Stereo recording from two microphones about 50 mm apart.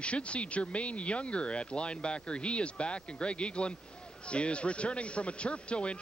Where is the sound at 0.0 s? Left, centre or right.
Left.